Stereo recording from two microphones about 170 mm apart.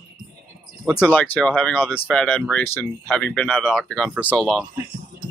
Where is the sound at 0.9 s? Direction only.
10° left (ahead or behind).